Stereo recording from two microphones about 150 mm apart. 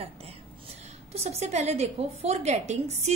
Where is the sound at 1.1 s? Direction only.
45° right (ahead or behind).